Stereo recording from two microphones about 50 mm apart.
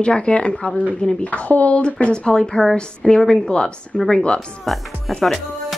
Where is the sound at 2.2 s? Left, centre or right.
Centre.